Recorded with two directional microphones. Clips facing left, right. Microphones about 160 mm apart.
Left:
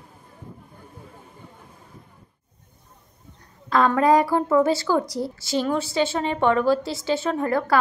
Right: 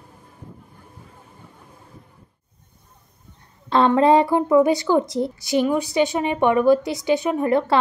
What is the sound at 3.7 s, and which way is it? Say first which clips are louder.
A woman's voice: right 3 dB; 25° right (ahead or behind).